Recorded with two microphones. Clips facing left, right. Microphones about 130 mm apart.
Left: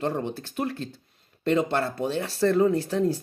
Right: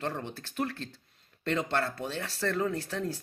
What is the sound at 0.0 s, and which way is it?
Speech, 15° left (ahead or behind).